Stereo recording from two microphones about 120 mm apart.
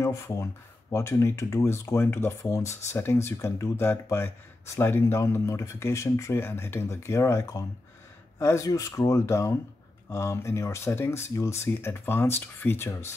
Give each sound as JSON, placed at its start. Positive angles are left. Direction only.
{"t": 0.0, "sound": "speech", "side_deg": 25}